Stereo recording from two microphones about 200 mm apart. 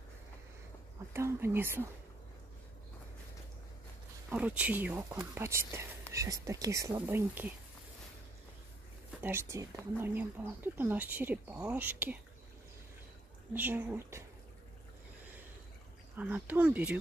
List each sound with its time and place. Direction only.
1.1 s speech: 10° right (ahead or behind)
4.3 s speech: 5° right (ahead or behind)
9.2 s speech: 10° right (ahead or behind)
13.5 s speech: 10° right (ahead or behind)
16.2 s speech: 10° right (ahead or behind)